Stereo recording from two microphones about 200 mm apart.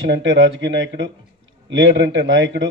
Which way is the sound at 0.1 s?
75° right (ahead or behind).